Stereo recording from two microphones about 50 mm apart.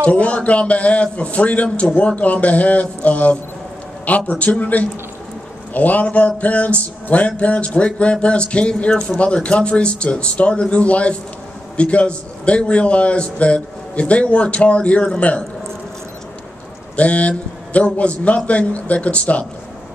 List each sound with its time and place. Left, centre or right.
0.0 s music: left
4.1 s speech: left
5.7 s music: left
16.9 s music: left